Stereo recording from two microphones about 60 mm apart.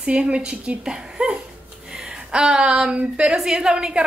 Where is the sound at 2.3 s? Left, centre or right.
Centre.